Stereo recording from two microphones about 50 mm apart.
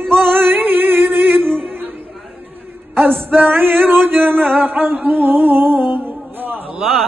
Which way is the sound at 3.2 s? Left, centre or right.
Right.